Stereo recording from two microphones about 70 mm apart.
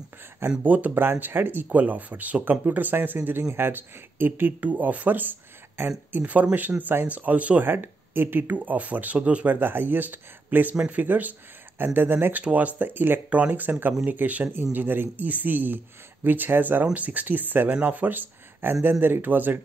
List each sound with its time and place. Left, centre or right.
0.7 s speech: right